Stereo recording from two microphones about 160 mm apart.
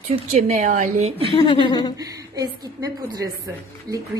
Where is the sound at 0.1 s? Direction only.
40° right (ahead or behind).